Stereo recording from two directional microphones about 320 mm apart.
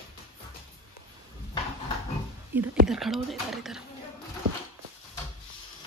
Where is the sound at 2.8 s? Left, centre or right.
Centre.